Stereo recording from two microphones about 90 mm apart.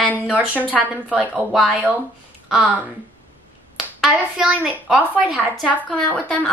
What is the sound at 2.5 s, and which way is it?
Speech, 15° right (ahead or behind).